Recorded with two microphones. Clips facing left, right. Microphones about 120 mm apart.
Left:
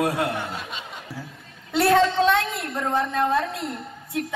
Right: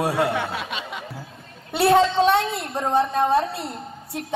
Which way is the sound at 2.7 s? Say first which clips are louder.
Right 3 dB; 25° right (ahead or behind).